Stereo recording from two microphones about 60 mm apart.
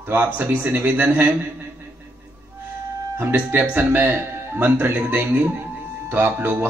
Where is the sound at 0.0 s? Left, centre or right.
Right.